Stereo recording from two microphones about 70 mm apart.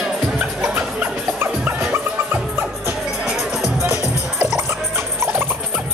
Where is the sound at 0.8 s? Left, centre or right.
Right.